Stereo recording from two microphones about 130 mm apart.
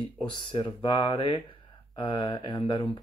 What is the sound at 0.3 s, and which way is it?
Speech, 35° left (ahead or behind).